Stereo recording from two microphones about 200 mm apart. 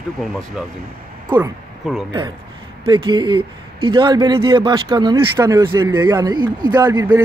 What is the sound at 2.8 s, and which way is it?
Speech, 25° right (ahead or behind).